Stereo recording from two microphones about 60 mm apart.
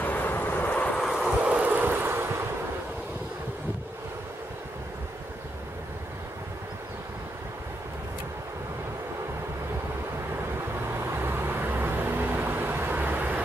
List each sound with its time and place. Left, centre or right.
0.0 s vehicle: left
0.9 s a sound: centre
1.6 s waves: right
10.9 s vehicle: right